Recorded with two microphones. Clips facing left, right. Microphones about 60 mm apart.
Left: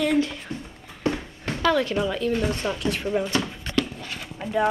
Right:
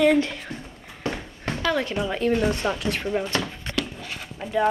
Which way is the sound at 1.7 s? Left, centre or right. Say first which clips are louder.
Left 2 dB; centre.